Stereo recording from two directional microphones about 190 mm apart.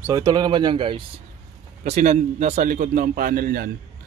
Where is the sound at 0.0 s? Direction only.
20° right (ahead or behind).